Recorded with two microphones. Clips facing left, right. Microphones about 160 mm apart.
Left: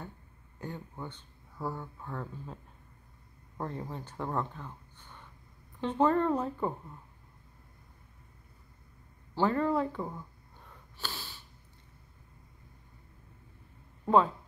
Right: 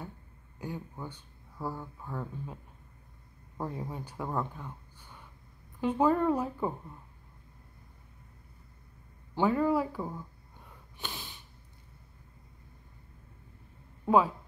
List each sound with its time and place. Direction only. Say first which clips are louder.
0.6 s speech: right 1 dB; 10° right (ahead or behind)
9.3 s speech: right 1 dB; 10° right (ahead or behind)
11.0 s snort: even; 15° right (ahead or behind)
14.0 s speech: even; 5° right (ahead or behind)